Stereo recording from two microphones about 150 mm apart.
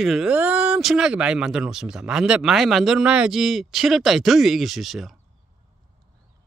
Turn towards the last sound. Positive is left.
turn(degrees=0)  # may be behind; listen again after turning